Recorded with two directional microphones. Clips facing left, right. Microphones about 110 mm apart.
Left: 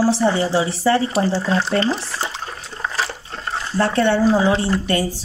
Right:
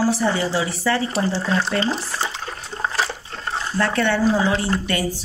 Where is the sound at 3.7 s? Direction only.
30° left (ahead or behind).